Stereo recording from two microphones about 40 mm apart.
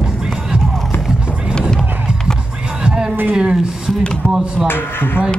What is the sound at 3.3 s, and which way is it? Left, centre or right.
Speech, right.